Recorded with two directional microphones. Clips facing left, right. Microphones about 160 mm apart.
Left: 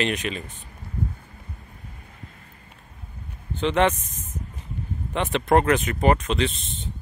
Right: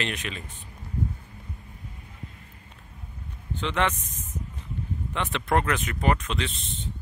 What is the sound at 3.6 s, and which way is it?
Speech, 20° left (ahead or behind).